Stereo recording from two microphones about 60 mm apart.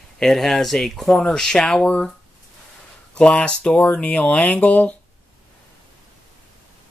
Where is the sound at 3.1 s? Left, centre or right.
Centre.